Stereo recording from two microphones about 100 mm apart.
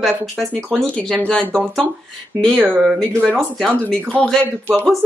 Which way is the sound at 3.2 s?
5° left (ahead or behind).